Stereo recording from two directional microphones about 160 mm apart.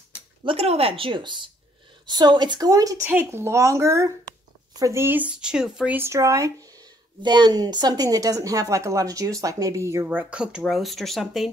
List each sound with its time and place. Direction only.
0.4 s a woman's voice: 35° right (ahead or behind); by 11.5 s centre (ahead or behind)